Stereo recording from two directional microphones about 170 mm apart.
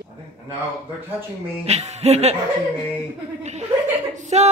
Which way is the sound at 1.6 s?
40° right (ahead or behind).